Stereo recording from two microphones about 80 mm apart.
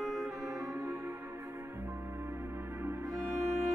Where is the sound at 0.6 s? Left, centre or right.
Right.